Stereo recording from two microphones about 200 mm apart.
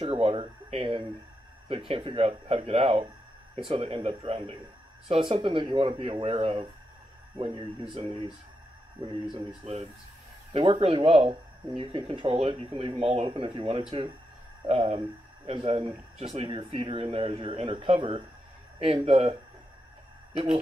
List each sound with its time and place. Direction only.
0.0 s speech: 30° right (ahead or behind)
9.6 s speech: 35° right (ahead or behind)